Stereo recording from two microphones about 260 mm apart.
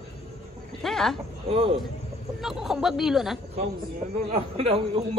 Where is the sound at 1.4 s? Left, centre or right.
Right.